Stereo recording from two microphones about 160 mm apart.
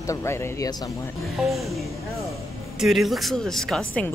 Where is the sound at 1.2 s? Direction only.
Centre (ahead or behind).